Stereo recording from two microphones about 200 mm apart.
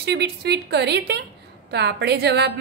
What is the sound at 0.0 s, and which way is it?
A woman's voice, 55° right (ahead or behind).